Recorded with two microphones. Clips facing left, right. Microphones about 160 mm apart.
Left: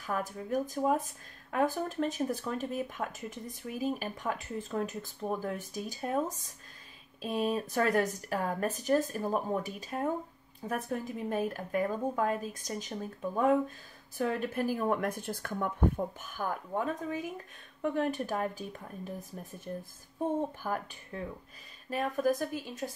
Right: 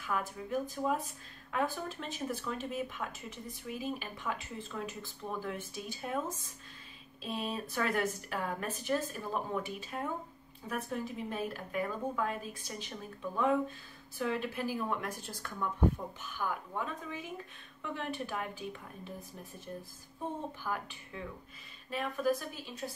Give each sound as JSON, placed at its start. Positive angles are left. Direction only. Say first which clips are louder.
{"t": 0.0, "sound": "speech", "louder": "left 2 dB", "side_deg": 40}
{"t": 20.6, "sound": "speech", "louder": "left 3 dB", "side_deg": 45}